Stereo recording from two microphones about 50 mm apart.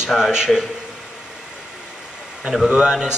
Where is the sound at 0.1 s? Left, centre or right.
Centre.